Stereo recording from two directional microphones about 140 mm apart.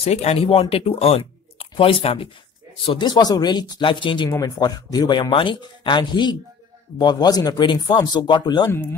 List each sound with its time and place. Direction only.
0.0 s speech: 50° left (ahead or behind); by 8.6 s 30° left (ahead or behind)